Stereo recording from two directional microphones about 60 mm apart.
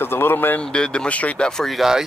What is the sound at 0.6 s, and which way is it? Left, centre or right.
Speech, centre.